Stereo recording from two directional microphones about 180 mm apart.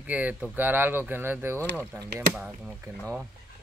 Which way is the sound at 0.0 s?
10° right (ahead or behind).